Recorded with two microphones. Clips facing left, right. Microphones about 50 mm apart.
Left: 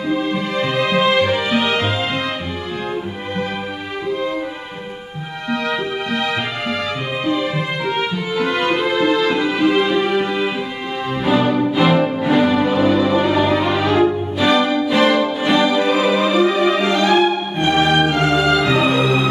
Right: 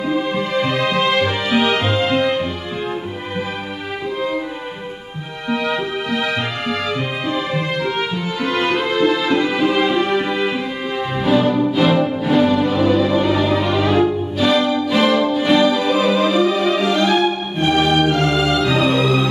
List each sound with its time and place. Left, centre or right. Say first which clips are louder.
0.0 s music: even; centre
5.5 s music: right 1 dB; centre
15.6 s music: even; centre